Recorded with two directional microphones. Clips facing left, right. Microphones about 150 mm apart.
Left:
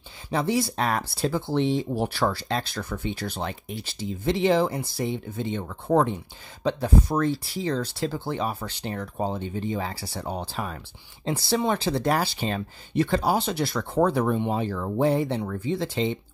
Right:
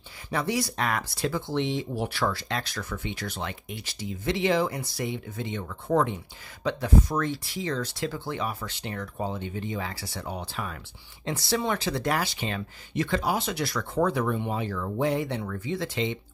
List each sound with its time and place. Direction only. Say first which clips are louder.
0.3 s speech: left 3 dB; 25° left (ahead or behind)